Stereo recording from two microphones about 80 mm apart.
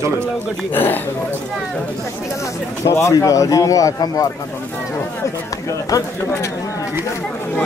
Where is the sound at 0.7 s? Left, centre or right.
Left.